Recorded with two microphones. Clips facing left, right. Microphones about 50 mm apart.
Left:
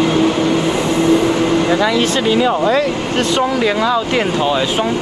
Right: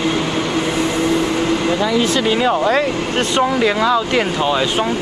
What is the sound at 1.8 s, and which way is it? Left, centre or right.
Speech, left.